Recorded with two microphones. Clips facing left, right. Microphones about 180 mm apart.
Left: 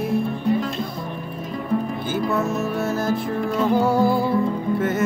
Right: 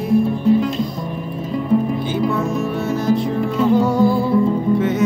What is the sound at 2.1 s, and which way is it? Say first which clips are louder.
Music: right 1 dB; 5° left (ahead or behind).